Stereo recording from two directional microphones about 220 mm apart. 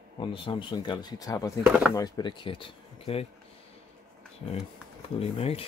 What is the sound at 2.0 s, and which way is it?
Speech, 15° left (ahead or behind).